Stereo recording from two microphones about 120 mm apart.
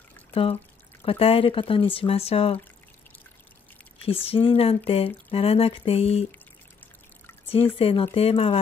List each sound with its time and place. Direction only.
0.3 s speech: 55° left (ahead or behind)
4.0 s speech: 50° left (ahead or behind)
7.5 s speech: 50° left (ahead or behind)